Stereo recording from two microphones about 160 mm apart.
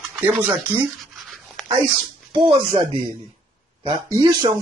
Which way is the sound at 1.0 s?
Centre (ahead or behind).